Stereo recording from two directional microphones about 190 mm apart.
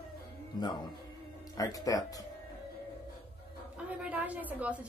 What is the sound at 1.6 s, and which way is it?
Speech, 20° left (ahead or behind).